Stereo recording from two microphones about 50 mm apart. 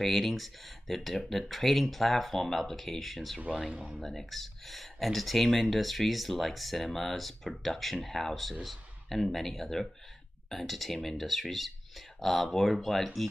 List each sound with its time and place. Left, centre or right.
0.0 s speech: centre
3.7 s speech: right
4.0 s speech: centre